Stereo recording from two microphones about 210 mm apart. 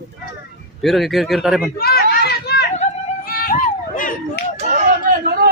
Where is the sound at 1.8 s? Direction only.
50° left (ahead or behind).